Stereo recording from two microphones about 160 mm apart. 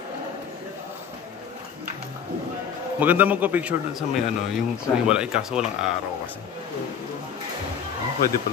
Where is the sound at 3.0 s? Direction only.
10° right (ahead or behind).